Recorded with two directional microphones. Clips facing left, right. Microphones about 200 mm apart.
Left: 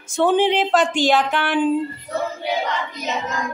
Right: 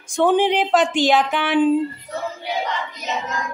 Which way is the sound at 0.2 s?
15° right (ahead or behind).